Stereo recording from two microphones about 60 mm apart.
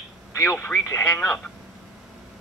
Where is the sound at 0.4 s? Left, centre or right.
Left.